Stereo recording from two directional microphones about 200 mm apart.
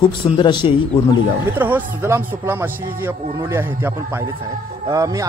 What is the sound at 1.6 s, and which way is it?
A man's voice, 10° right (ahead or behind).